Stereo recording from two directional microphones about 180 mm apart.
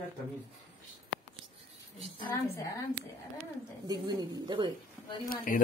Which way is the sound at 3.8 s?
20° right (ahead or behind).